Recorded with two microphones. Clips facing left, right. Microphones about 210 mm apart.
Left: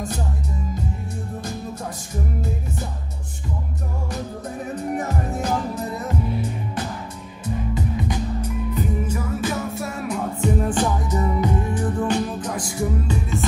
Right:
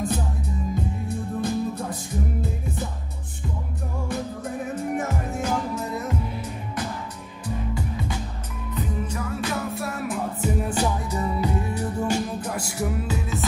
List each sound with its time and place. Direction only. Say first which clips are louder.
4.9 s music: left 2 dB; 35° left (ahead or behind)
7.4 s music: left 3 dB; 20° left (ahead or behind)
8.7 s music: left 1 dB; 5° left (ahead or behind)
11.1 s music: left 3 dB; 35° right (ahead or behind)
12.1 s music: left 2 dB; 10° right (ahead or behind)